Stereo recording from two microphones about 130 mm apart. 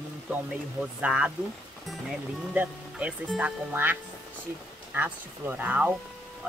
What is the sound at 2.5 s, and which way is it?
Speech, 10° right (ahead or behind).